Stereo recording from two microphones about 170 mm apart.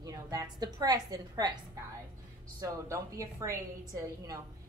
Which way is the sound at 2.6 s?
20° right (ahead or behind).